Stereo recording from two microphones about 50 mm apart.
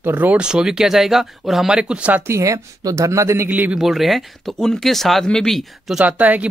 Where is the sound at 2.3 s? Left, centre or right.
Right.